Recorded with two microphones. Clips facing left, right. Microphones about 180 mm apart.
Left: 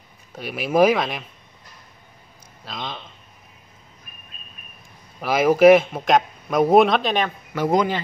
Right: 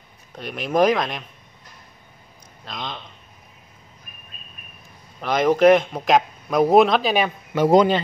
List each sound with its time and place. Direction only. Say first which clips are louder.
0.3 s speech: left 1 dB; 5° left (ahead or behind)
2.6 s speech: even; centre (ahead or behind)
5.2 s speech: left 2 dB; 5° left (ahead or behind)
7.2 s a man's voice: right 4 dB; 25° right (ahead or behind)